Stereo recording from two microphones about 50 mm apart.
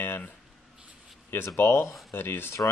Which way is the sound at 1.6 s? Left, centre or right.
Left.